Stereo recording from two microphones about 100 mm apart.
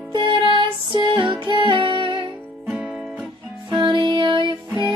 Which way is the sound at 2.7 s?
10° right (ahead or behind).